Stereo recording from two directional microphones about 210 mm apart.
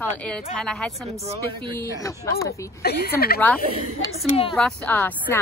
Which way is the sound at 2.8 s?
50° left (ahead or behind).